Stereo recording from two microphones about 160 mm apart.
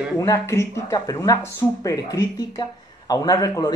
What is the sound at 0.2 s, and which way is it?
Speech, 15° left (ahead or behind).